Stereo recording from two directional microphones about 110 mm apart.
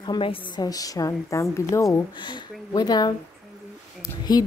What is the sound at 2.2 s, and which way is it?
Speech, 40° left (ahead or behind).